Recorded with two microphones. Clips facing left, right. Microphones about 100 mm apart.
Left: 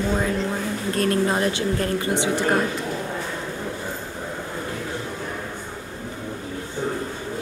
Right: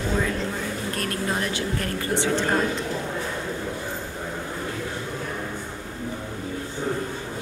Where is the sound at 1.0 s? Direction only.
30° left (ahead or behind).